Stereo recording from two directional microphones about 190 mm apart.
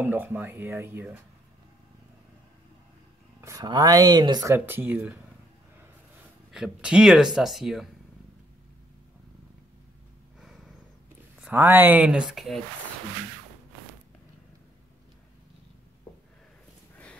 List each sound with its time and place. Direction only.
0.0 s speech: 10° right (ahead or behind)
3.3 s speech: 15° right (ahead or behind)
6.5 s speech: 5° right (ahead or behind)
10.4 s snort: centre (ahead or behind)
11.4 s speech: 10° right (ahead or behind)